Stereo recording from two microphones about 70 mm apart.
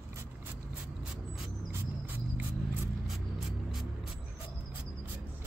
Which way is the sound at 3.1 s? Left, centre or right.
Centre.